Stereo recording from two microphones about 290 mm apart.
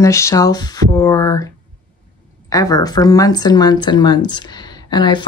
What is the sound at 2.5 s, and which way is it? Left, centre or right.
Speech, centre.